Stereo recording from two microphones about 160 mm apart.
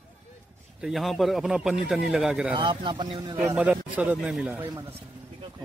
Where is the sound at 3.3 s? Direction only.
10° right (ahead or behind).